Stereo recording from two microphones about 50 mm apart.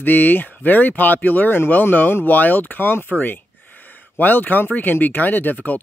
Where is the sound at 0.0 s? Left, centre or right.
Left.